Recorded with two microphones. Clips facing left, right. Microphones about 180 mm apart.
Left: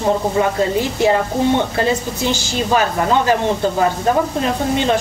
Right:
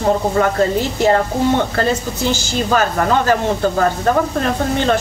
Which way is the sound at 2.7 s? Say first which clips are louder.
Even; 15° left (ahead or behind).